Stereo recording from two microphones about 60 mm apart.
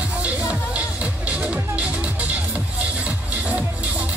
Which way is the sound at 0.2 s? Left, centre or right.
Right.